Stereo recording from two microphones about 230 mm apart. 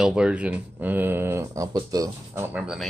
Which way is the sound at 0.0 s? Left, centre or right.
Centre.